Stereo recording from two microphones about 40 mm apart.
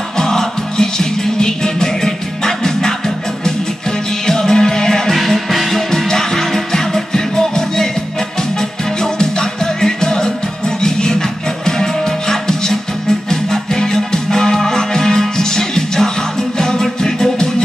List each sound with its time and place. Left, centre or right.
0.2 s music: centre
4.3 s music: centre
5.1 s music: centre
5.9 s music: centre